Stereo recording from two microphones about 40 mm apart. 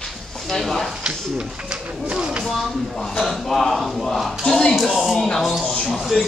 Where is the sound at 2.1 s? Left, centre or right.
Right.